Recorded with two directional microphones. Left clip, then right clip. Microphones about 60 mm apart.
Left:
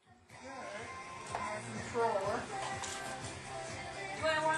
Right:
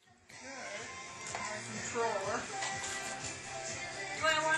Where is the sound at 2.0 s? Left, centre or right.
Right.